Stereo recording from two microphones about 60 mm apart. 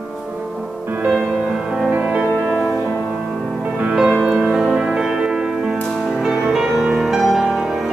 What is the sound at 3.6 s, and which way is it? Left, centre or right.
Music, centre.